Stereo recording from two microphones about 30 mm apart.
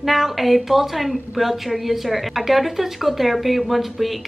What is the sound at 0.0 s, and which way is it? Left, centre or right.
A woman's voice, centre.